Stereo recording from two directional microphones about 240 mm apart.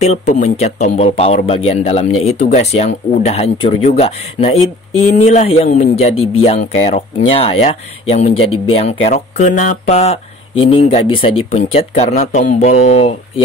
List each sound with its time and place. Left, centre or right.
0.0 s speech: left